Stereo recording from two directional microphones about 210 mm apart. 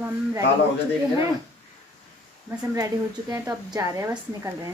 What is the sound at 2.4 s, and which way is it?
Speech, 15° right (ahead or behind).